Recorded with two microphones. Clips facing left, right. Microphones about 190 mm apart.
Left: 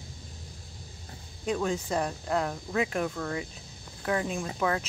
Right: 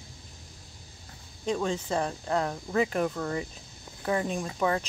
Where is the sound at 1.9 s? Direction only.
5° left (ahead or behind).